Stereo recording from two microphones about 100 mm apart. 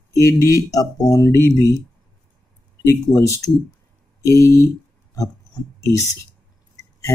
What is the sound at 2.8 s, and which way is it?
Speech, 35° left (ahead or behind).